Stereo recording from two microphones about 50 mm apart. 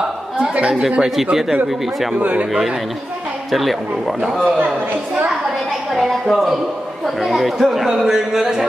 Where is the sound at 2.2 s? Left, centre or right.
Right.